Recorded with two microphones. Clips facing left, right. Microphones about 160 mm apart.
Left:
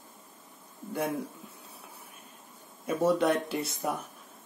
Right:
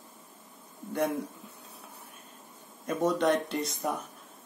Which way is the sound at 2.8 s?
5° left (ahead or behind).